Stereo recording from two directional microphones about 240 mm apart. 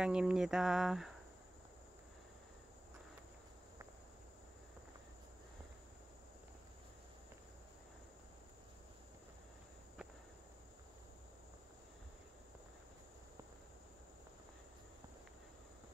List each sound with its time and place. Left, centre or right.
0.0 s speech: centre